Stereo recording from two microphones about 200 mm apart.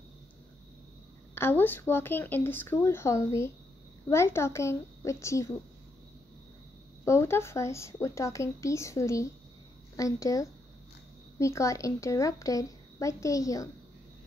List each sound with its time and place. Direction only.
1.3 s a woman's voice: 10° left (ahead or behind)
7.1 s a woman's voice: 15° left (ahead or behind)